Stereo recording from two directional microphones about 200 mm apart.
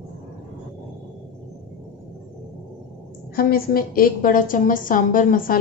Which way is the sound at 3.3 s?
50° left (ahead or behind).